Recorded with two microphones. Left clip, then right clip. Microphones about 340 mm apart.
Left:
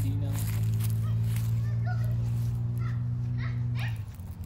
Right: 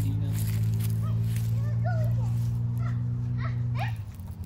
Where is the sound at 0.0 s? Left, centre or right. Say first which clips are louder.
Right 1 dB; centre.